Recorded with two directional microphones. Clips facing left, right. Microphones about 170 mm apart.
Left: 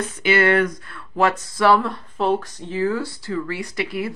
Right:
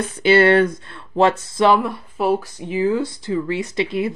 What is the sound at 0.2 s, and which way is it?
Speech, 30° right (ahead or behind).